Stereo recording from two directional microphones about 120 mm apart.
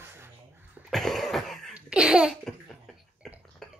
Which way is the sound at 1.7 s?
10° right (ahead or behind).